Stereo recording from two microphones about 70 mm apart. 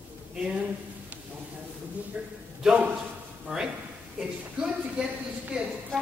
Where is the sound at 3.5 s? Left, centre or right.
Centre.